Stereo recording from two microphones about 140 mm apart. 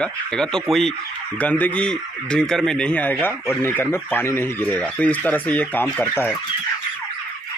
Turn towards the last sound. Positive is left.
turn(degrees=10)  # may be behind; listen again after turning